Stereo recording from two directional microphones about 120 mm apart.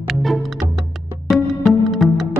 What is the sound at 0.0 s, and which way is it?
Music, centre (ahead or behind).